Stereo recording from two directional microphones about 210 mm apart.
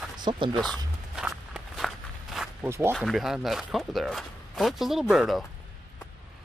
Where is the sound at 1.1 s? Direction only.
Centre (ahead or behind).